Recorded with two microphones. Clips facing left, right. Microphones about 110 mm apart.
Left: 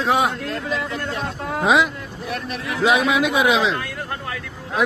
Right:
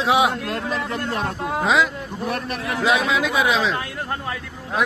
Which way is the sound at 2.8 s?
25° left (ahead or behind).